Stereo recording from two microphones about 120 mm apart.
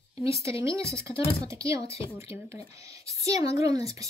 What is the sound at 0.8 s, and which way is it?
Speech, 25° right (ahead or behind).